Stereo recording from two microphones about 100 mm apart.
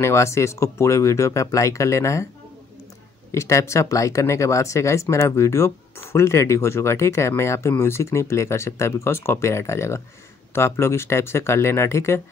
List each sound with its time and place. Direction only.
0.0 s speech: 30° left (ahead or behind)
3.3 s speech: 30° left (ahead or behind)